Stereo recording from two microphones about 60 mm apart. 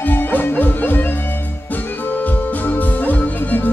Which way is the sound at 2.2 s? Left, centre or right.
Left.